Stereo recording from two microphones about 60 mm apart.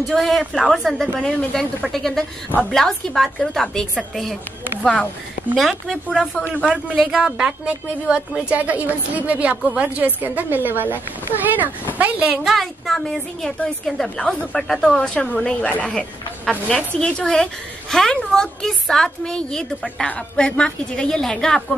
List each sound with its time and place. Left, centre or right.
0.1 s a woman's voice: centre
5.6 s a woman's voice: centre
6.6 s a woman's voice: centre
8.5 s a woman's voice: right
12.4 s a woman's voice: centre
15.0 s a woman's voice: centre